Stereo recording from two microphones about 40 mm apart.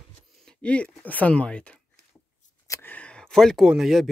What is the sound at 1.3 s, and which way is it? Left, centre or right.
Speech, left.